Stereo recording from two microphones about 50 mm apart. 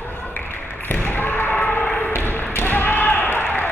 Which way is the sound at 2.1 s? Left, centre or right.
Left.